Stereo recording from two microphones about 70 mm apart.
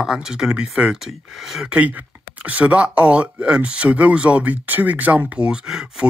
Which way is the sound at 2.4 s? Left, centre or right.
Centre.